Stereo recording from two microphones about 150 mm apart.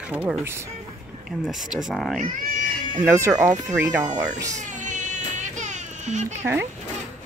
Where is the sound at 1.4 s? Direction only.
5° right (ahead or behind).